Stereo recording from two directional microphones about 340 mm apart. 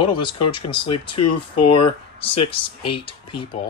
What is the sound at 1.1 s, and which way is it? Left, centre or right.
Speech, left.